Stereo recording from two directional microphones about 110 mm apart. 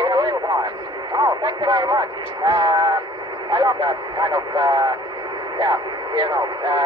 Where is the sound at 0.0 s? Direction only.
40° right (ahead or behind).